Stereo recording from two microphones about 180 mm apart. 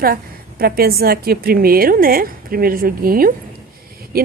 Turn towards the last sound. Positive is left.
turn(degrees=-55)  # may be behind; listen again after turning